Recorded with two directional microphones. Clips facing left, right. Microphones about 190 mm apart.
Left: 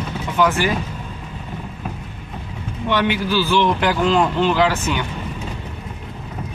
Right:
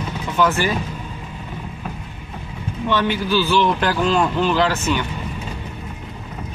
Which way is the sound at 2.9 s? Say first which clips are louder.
Even; 15° left (ahead or behind).